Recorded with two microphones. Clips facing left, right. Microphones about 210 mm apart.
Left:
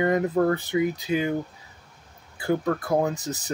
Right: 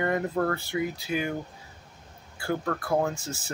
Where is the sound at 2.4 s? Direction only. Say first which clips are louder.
Left 5 dB; 20° left (ahead or behind).